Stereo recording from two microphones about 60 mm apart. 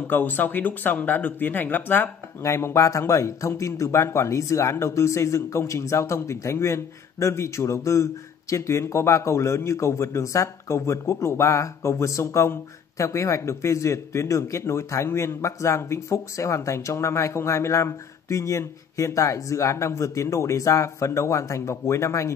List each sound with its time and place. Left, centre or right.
0.0 s speech: left
2.4 s speech: left